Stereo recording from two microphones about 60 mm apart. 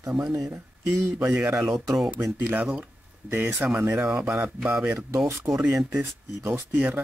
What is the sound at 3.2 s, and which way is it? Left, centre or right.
Speech, right.